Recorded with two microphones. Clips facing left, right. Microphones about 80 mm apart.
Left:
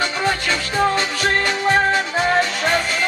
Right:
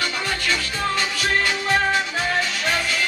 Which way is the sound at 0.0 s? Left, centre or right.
Left.